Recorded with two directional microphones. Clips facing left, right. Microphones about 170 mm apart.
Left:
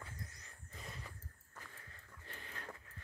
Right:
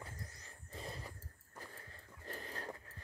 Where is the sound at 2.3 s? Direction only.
35° right (ahead or behind).